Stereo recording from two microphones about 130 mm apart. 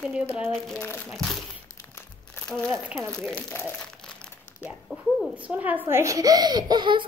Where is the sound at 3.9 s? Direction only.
5° left (ahead or behind).